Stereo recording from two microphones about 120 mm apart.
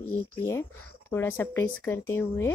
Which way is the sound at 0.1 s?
25° left (ahead or behind).